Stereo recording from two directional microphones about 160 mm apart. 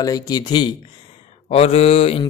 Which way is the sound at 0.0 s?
25° left (ahead or behind).